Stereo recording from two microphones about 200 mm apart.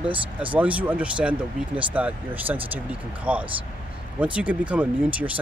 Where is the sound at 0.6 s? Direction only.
5° right (ahead or behind).